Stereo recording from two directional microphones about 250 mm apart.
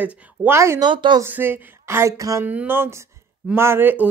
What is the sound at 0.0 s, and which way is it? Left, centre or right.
Speech, centre.